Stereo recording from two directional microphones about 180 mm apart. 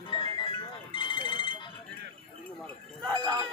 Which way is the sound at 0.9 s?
25° left (ahead or behind).